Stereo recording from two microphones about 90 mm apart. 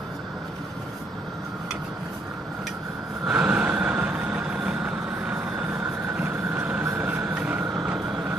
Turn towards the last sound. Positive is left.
turn(degrees=-5)  # may be behind; listen again after turning